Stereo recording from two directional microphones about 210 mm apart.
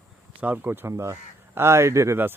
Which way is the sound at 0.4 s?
10° right (ahead or behind).